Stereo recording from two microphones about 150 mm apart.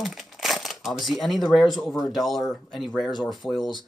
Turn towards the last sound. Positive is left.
turn(degrees=0)  # may be behind; listen again after turning